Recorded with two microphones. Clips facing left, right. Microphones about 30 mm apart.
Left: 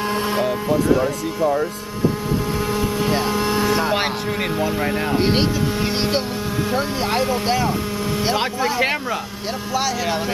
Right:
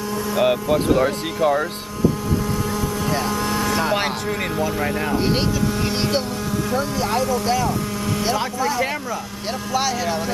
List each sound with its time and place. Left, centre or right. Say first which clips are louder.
0.4 s speech: right 6 dB; right
3.1 s speech: left 1 dB; left
5.1 s speech: left 3 dB; left
6.7 s speech: even; left